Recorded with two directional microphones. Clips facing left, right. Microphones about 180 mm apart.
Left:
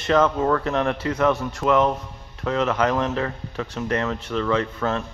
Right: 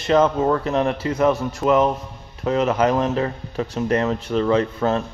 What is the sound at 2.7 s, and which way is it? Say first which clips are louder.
Speech: right 3 dB; 30° right (ahead or behind).